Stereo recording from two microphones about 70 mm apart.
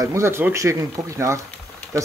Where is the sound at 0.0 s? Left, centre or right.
Right.